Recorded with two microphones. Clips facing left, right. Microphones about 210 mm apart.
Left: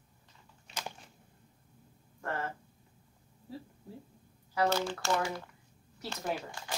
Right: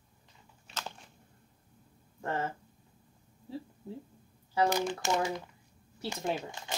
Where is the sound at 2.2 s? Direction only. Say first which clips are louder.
Right 3 dB; 25° right (ahead or behind).